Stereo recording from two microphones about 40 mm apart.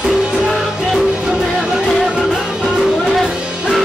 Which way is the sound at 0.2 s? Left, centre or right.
Right.